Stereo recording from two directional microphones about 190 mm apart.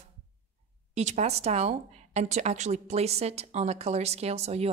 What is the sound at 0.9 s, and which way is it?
Speech, 35° right (ahead or behind).